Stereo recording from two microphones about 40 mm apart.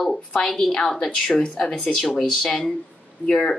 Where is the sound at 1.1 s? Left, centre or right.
Left.